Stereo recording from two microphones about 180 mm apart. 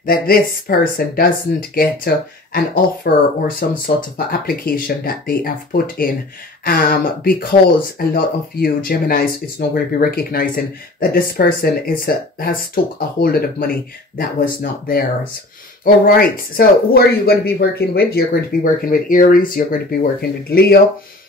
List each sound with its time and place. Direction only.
0.0 s speech: 55° left (ahead or behind)